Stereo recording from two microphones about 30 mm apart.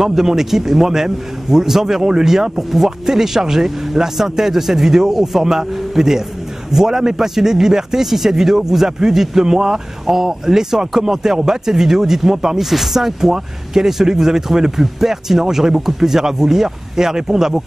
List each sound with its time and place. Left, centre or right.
0.0 s speech: centre